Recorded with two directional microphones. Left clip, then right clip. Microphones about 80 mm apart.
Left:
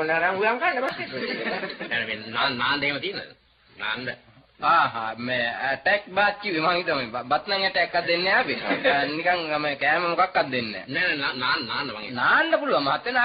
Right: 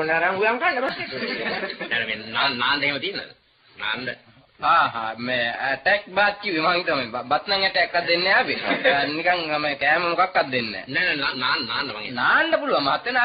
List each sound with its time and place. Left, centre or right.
0.0 s a man's voice: right
4.7 s a man's voice: right
7.2 s a man's voice: right
7.4 s a man's voice: right